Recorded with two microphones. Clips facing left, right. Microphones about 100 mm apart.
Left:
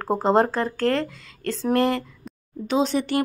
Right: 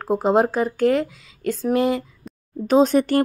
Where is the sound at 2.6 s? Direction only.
45° right (ahead or behind).